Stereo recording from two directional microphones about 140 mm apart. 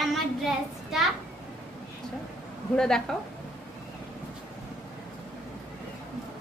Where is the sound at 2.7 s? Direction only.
5° left (ahead or behind).